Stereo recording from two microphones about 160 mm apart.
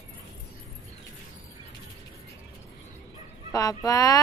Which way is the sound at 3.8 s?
20° left (ahead or behind).